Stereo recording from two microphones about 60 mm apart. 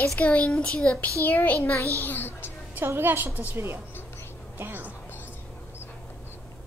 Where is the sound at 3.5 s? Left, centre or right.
Right.